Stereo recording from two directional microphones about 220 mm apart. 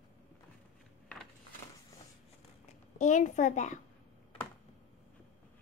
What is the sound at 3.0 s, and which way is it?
Speech, 35° left (ahead or behind).